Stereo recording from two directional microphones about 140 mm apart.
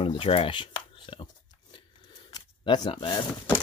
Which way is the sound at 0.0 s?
40° left (ahead or behind).